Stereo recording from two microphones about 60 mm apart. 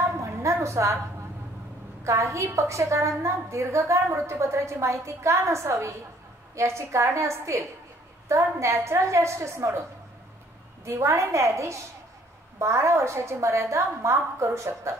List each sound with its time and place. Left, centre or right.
0.0 s a sound: right
2.0 s a woman's voice: right
10.9 s a woman's voice: right